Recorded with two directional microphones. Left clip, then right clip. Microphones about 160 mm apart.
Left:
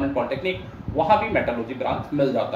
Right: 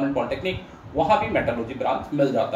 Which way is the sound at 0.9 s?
5° left (ahead or behind).